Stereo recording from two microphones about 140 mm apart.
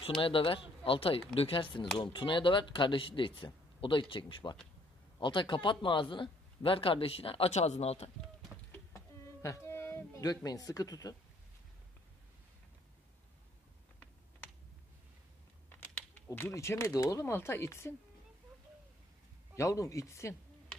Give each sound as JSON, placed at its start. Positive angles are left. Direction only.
{"t": 0.0, "sound": "speech", "side_deg": 40}
{"t": 8.7, "sound": "a sound", "side_deg": 20}
{"t": 15.7, "sound": "speech", "side_deg": 15}
{"t": 19.5, "sound": "speech", "side_deg": 20}